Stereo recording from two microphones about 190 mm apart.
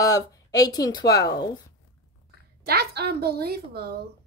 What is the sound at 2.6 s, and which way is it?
A woman's voice, 55° right (ahead or behind).